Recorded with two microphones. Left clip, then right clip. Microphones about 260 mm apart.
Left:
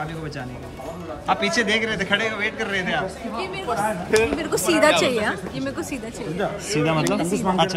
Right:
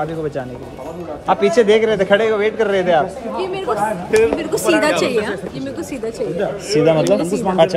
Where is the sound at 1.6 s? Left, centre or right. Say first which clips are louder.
Right 9 dB; centre.